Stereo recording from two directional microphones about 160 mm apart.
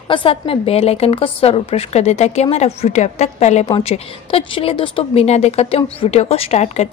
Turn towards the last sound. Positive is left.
turn(degrees=40)  # may be behind; listen again after turning